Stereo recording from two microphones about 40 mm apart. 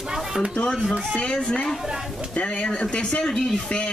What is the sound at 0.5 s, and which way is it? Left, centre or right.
Speech, left.